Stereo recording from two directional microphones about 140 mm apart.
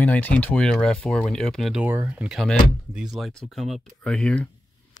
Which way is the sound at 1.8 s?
15° right (ahead or behind).